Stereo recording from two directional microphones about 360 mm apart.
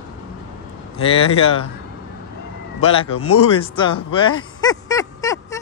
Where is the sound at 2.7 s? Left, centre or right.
Centre.